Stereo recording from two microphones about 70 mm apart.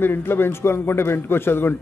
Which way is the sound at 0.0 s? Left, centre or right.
Left.